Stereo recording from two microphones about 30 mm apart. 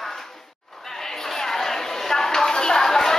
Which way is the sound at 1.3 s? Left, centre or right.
Centre.